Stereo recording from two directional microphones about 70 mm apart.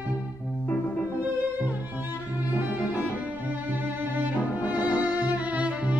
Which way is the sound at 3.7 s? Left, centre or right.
Right.